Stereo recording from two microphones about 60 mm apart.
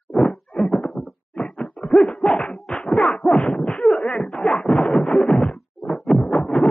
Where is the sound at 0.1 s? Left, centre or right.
Centre.